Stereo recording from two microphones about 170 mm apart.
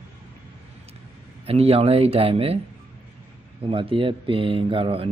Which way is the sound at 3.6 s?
30° right (ahead or behind).